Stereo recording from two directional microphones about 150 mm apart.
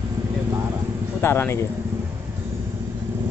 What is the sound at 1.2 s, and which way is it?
Speech, 15° left (ahead or behind).